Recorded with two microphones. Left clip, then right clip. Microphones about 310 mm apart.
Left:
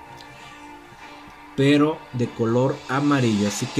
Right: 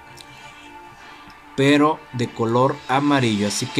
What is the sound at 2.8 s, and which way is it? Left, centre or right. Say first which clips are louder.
Speech: right 3 dB; centre.